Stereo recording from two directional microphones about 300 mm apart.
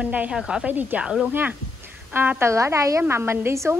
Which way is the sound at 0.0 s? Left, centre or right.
Centre.